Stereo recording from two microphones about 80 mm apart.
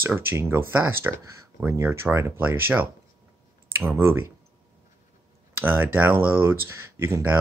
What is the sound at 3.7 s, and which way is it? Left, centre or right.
Speech, right.